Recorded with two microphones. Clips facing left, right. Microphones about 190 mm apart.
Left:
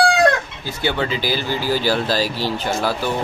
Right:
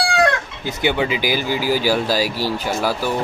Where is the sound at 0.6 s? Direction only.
15° right (ahead or behind).